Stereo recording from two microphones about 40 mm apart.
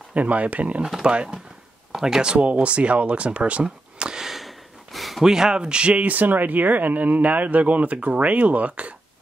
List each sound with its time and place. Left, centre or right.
0.1 s speech: right
1.0 s speech: right
2.3 s speech: right
3.6 s a sound: centre
5.2 s speech: centre
6.0 s speech: right